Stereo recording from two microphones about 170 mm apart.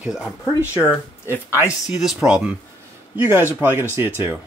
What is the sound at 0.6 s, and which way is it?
Speech, 15° left (ahead or behind).